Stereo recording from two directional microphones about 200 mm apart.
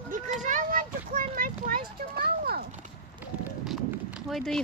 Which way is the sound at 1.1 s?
45° right (ahead or behind).